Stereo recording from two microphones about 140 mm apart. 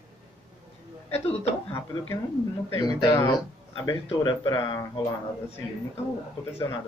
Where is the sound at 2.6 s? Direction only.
20° left (ahead or behind).